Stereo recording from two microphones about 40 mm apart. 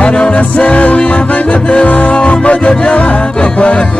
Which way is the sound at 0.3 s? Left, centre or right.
Left.